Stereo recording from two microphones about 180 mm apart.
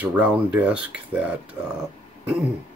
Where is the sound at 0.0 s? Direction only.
5° right (ahead or behind).